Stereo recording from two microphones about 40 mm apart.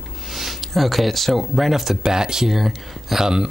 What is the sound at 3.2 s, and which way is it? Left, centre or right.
Speech, centre.